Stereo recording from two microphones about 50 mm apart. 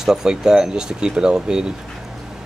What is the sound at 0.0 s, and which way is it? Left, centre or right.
Speech, centre.